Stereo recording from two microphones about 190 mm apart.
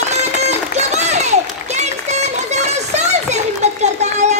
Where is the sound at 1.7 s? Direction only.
35° right (ahead or behind).